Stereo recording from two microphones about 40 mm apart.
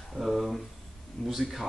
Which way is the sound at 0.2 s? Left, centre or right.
Centre.